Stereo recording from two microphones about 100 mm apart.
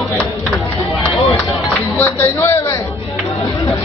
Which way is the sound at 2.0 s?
25° left (ahead or behind).